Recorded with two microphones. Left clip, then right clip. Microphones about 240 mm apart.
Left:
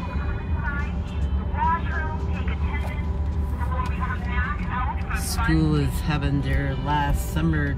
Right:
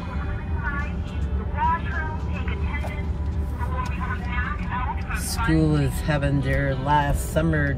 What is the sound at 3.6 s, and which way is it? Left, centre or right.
Vehicle, left.